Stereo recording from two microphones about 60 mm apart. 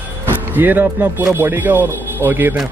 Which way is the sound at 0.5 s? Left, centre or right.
Right.